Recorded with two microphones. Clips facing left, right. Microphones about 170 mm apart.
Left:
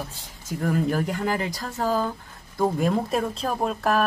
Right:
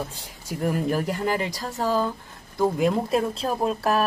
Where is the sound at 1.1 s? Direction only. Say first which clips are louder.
Right 1 dB; centre (ahead or behind).